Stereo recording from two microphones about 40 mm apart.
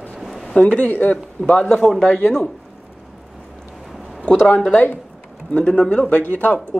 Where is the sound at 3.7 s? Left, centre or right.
Centre.